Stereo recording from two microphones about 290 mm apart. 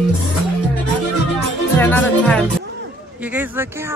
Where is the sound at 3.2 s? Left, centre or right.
Centre.